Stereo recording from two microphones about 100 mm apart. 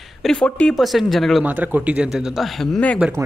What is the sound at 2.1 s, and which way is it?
Speech, 5° right (ahead or behind).